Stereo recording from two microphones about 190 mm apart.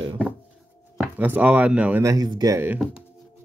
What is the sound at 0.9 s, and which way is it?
Speech, 5° right (ahead or behind).